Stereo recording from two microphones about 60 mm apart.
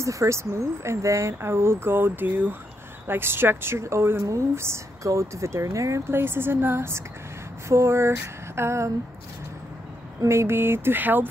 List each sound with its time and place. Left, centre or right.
0.0 s speech: right
1.4 s speech: right
6.1 s speech: right
7.6 s speech: right
10.2 s speech: right